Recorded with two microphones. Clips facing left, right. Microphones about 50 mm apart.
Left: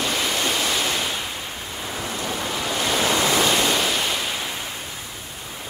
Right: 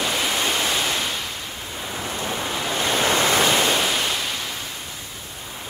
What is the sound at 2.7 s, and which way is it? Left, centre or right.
Waves, right.